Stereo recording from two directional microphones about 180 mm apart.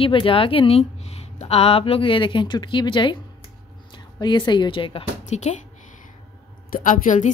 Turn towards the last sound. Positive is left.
turn(degrees=45)  # may be behind; listen again after turning